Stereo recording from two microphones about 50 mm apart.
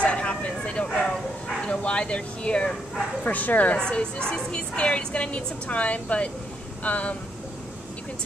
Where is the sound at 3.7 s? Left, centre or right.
Centre.